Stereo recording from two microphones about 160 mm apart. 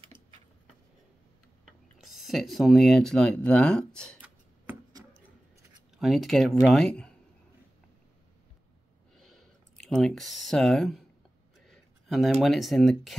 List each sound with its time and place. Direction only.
1.7 s speech: centre (ahead or behind)
5.9 s speech: centre (ahead or behind)
9.1 s a sound: centre (ahead or behind)
11.6 s speech: centre (ahead or behind)